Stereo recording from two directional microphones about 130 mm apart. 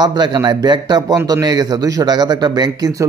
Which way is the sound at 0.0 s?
35° right (ahead or behind).